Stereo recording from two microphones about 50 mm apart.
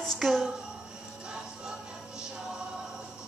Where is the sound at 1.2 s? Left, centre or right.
Centre.